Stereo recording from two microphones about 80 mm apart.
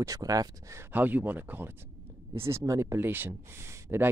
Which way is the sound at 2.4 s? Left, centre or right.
Right.